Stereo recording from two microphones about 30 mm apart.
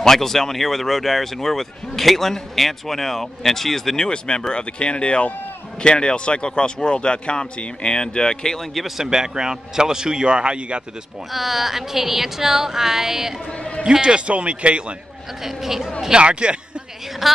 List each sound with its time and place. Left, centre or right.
0.0 s speech: centre
4.4 s speech: left
8.9 s a man's voice: centre
11.3 s speech: centre
13.5 s a sound: left
14.0 s a man's voice: right
15.4 s speech: centre
16.1 s a man's voice: right
17.2 s a woman's voice: centre